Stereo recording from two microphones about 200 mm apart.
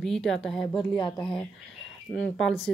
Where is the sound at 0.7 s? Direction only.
25° left (ahead or behind).